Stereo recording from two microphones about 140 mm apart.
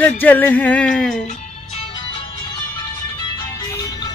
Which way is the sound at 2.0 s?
35° left (ahead or behind).